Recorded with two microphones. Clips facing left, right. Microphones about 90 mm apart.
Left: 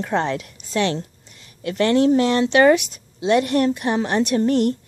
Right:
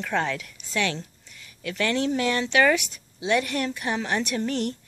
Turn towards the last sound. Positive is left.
turn(degrees=40)  # may be behind; listen again after turning